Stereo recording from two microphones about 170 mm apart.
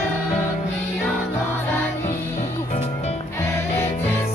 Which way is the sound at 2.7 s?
40° left (ahead or behind).